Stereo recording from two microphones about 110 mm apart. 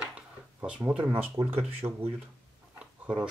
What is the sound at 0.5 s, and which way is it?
Speech, 15° right (ahead or behind).